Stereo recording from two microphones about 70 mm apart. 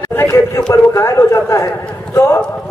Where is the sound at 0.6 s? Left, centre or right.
Left.